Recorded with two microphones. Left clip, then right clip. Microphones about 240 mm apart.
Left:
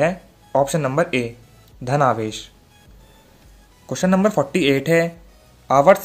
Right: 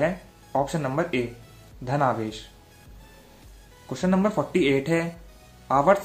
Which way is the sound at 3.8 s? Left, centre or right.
Left.